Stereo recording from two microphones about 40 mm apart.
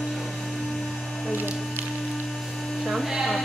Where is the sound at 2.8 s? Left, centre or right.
Centre.